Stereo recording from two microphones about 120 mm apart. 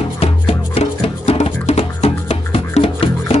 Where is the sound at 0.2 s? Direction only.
55° left (ahead or behind).